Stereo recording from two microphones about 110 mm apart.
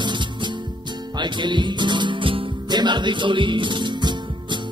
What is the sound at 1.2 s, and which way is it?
Music, 45° right (ahead or behind).